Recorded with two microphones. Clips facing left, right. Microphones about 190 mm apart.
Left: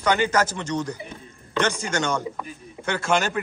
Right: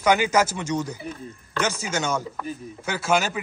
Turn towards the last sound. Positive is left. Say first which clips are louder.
# even
turn(degrees=-5)  # may be behind; listen again after turning